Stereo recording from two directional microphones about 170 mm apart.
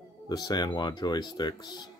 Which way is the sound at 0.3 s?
25° left (ahead or behind).